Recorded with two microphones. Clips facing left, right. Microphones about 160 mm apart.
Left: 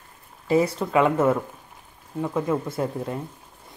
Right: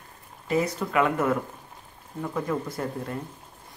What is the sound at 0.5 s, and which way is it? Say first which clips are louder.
Speech: left 5 dB; 30° left (ahead or behind).